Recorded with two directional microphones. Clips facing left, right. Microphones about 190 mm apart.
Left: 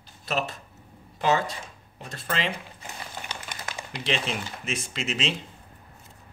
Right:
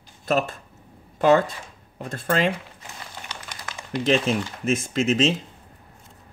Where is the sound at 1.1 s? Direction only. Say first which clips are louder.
Right 7 dB; 50° right (ahead or behind).